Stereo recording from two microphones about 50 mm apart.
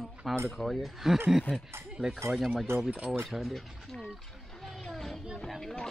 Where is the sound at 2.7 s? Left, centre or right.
Right.